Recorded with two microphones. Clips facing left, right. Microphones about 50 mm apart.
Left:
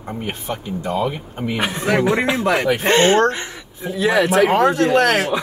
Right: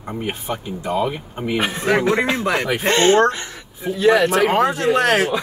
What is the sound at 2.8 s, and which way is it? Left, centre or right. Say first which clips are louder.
Speech: right 1 dB; left.